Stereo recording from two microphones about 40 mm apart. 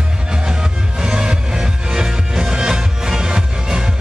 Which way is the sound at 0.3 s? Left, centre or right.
Centre.